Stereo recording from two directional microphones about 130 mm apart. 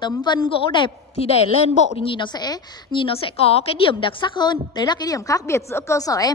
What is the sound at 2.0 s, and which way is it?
A woman's voice, 40° left (ahead or behind).